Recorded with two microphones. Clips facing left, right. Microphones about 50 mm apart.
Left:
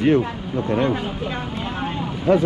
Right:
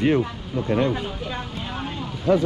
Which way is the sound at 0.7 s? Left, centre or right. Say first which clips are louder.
Left 1 dB; left.